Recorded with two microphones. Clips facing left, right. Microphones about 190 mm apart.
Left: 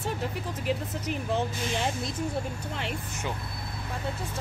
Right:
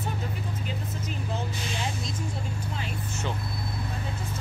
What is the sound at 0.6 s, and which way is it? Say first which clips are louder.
Speech: left 5 dB; 70° left (ahead or behind).